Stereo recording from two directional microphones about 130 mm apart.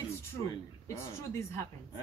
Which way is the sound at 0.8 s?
20° left (ahead or behind).